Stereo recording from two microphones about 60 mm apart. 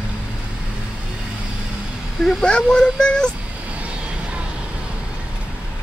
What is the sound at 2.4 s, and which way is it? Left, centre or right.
Speech, centre.